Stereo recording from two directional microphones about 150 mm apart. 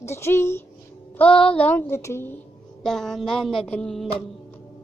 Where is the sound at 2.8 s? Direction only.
5° left (ahead or behind).